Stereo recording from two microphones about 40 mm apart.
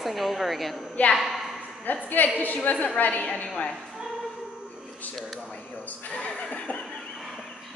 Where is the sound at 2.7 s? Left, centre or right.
Left.